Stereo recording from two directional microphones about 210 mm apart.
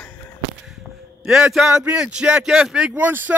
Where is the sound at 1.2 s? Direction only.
5° right (ahead or behind).